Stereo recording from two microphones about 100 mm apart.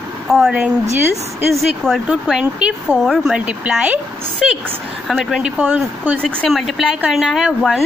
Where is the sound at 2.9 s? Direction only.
5° left (ahead or behind).